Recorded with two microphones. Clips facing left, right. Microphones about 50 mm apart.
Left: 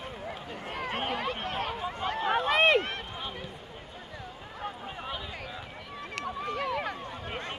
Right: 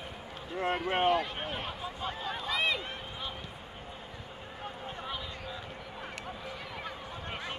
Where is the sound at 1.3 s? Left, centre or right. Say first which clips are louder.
Left 5 dB; left.